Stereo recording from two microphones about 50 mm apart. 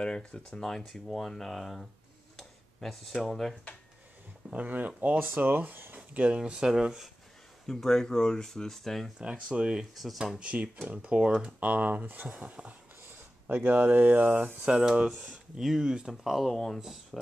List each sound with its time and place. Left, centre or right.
0.0 s speech: centre
0.6 s speech: centre
2.3 s a sound: centre
4.5 s speech: right
5.2 s speech: right
5.9 s a sound: right
6.3 s speech: centre
7.6 s speech: centre
9.2 s speech: centre
10.9 s speech: right
13.0 s speech: right
14.8 s speech: centre
16.5 s speech: centre
16.8 s speech: centre